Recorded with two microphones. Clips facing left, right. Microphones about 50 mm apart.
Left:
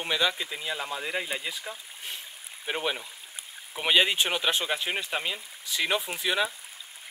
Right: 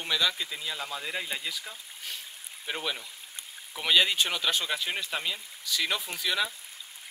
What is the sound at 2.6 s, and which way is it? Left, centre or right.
Speech, centre.